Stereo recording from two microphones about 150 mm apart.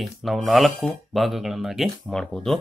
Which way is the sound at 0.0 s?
Centre (ahead or behind).